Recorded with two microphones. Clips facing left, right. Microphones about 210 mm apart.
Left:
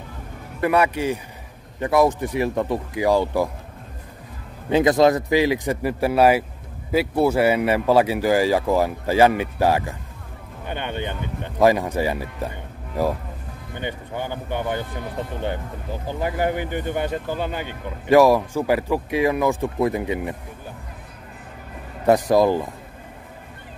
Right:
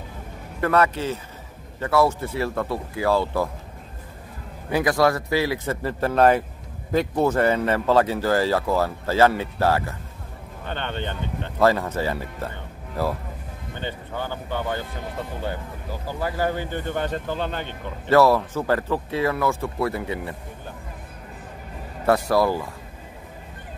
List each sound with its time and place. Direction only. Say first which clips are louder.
0.6 s speech: left 1 dB; 15° left (ahead or behind)
4.6 s speech: left 4 dB; 20° left (ahead or behind)
22.0 s speech: left 3 dB; 20° left (ahead or behind)